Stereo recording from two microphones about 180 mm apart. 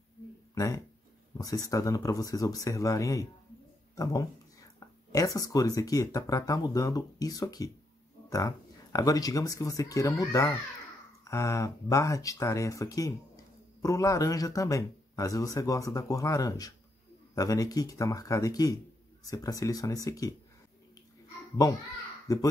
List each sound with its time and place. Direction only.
1.4 s speech: 20° left (ahead or behind)
22.3 s speech: 20° left (ahead or behind)